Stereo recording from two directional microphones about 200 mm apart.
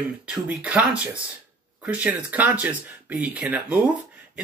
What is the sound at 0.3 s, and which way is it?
Speech, 5° right (ahead or behind).